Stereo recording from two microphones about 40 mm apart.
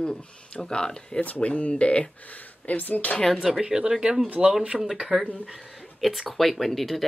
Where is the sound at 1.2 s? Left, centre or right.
Left.